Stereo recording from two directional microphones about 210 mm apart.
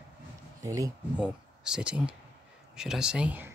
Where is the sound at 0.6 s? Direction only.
15° right (ahead or behind).